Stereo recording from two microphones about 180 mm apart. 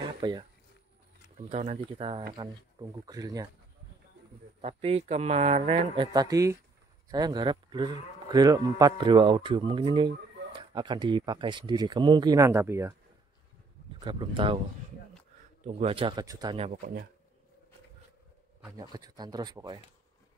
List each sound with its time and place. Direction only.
0.2 s speech: 25° right (ahead or behind)
1.5 s speech: 40° right (ahead or behind)
2.0 s speech: 30° right (ahead or behind)
4.6 s speech: 35° right (ahead or behind)
6.1 s speech: 20° right (ahead or behind)
14.0 s speech: 25° right (ahead or behind)
15.6 s speech: 35° right (ahead or behind)
18.8 s speech: 20° right (ahead or behind)